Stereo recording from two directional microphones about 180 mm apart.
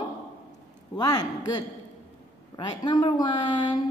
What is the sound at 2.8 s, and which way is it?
Speech, 25° left (ahead or behind).